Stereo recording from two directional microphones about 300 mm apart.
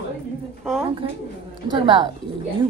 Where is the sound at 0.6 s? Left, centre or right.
Centre.